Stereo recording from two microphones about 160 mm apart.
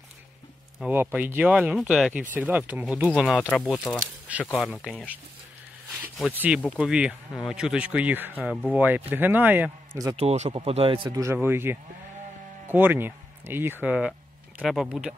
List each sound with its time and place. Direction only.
0.7 s speech: 10° right (ahead or behind)
3.7 s speech: 15° left (ahead or behind)
4.3 s speech: 10° right (ahead or behind)
6.3 s speech: 10° right (ahead or behind)
10.1 s speech: 40° right (ahead or behind); by 15.1 s 5° right (ahead or behind)